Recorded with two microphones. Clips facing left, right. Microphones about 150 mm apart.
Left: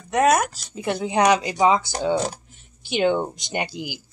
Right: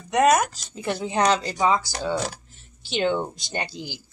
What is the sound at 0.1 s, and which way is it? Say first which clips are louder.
Speech: even; 5° left (ahead or behind).